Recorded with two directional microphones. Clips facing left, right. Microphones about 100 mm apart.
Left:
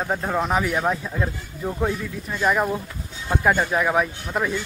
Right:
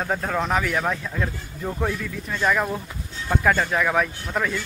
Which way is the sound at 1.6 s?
5° left (ahead or behind).